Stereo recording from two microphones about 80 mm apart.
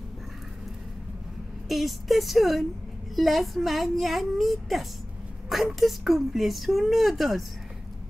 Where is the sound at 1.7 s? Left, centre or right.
Centre.